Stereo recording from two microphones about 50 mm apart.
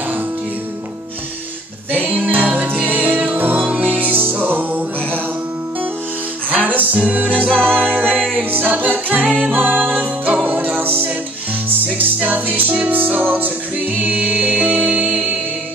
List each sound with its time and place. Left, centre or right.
1.9 s music: right
3.7 s music: right
6.5 s music: right
12.3 s music: right